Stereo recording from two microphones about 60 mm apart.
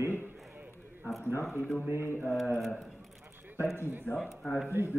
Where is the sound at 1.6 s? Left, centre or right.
Centre.